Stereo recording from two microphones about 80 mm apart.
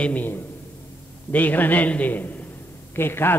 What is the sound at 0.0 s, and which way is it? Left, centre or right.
A man's voice, left.